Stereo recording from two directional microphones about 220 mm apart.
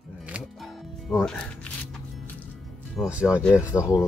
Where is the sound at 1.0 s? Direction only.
Centre (ahead or behind).